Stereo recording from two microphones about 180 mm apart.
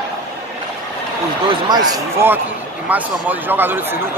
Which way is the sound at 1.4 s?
20° right (ahead or behind).